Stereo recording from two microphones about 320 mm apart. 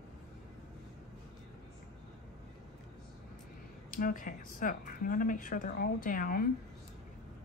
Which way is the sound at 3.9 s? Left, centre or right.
Left.